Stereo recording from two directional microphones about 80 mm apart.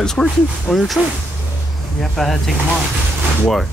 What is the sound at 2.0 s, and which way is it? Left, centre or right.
Speech, centre.